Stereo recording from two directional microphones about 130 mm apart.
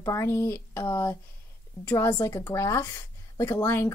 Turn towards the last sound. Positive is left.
turn(degrees=20)  # may be behind; listen again after turning